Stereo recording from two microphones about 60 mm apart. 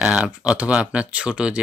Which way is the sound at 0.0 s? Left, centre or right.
Centre.